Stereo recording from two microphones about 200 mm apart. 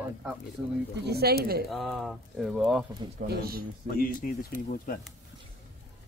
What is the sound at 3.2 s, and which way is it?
Speech, 50° right (ahead or behind).